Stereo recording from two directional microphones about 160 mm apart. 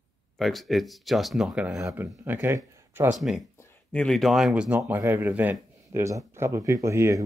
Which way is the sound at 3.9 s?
5° left (ahead or behind).